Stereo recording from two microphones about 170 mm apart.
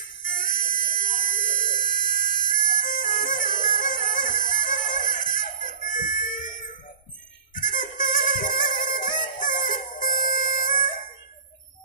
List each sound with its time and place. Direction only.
0.2 s music: 50° left (ahead or behind)
3.6 s bagpipes: 50° left (ahead or behind)
5.0 s a sound: 50° left (ahead or behind)
5.8 s music: 50° left (ahead or behind)